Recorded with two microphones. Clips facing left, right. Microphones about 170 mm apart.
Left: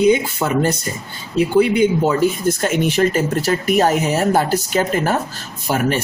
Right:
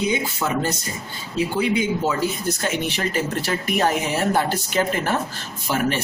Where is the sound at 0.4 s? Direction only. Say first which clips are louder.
Left 4 dB; 55° left (ahead or behind).